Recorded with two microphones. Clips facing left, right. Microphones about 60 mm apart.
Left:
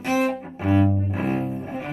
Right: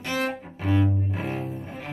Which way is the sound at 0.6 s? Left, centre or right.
Centre.